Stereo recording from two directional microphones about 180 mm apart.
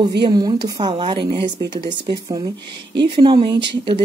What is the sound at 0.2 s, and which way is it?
Speech, 25° right (ahead or behind).